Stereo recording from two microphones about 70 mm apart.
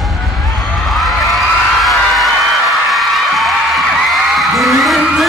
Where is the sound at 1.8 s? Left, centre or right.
Centre.